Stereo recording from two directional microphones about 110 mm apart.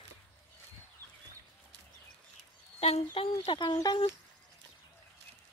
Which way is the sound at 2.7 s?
65° left (ahead or behind).